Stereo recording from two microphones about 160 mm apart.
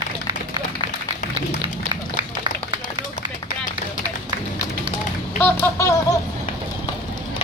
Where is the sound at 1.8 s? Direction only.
30° right (ahead or behind).